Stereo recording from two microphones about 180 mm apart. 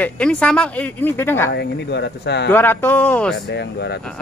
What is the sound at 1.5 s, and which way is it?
Speech, 70° left (ahead or behind).